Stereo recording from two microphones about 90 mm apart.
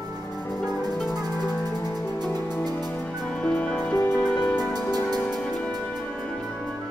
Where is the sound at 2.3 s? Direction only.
20° left (ahead or behind).